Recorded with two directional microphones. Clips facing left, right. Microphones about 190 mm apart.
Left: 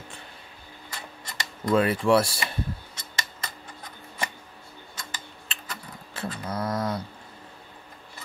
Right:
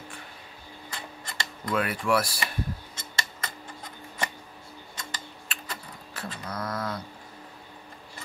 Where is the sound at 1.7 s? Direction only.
25° left (ahead or behind).